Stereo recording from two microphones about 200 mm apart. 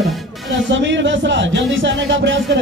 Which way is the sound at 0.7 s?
65° right (ahead or behind).